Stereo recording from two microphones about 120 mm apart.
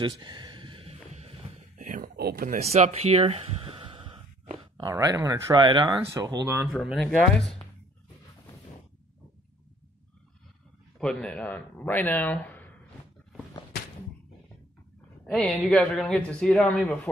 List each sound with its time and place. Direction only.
0.0 s a sound: 40° right (ahead or behind)
2.5 s speech: 70° right (ahead or behind); by 4.2 s 50° right (ahead or behind)
4.9 s speech: 25° right (ahead or behind)
6.1 s speech: 25° right (ahead or behind)
6.7 s a man's voice: centre (ahead or behind)
11.0 s a man's voice: 10° left (ahead or behind)
15.3 s a man's voice: 5° left (ahead or behind)